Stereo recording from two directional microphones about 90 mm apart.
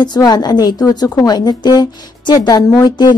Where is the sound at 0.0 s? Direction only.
45° left (ahead or behind).